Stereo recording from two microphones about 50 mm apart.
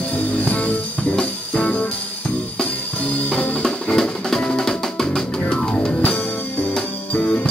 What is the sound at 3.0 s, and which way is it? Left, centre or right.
Music, left.